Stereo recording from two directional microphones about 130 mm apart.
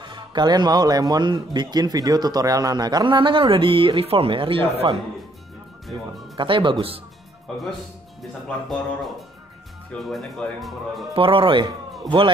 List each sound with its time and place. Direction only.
0.0 s speech: 35° right (ahead or behind)
6.3 s speech: 40° right (ahead or behind)
8.6 s speech: centre (ahead or behind)
11.1 s speech: 45° right (ahead or behind)